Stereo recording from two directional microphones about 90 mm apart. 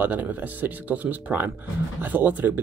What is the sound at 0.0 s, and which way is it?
Speech, 20° right (ahead or behind).